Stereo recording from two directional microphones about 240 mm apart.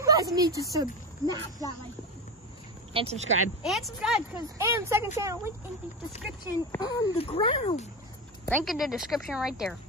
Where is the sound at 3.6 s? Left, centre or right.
Centre.